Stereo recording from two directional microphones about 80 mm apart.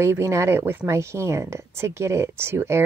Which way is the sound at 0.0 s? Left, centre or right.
Right.